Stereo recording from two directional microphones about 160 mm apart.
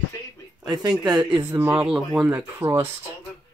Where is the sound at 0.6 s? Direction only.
25° right (ahead or behind).